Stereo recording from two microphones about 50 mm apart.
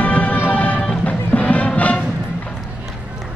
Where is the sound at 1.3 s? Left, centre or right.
Left.